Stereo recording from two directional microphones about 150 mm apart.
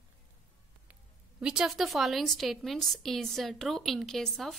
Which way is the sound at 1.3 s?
5° right (ahead or behind).